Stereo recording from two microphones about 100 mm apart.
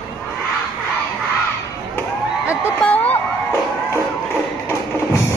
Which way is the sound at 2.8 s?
15° left (ahead or behind).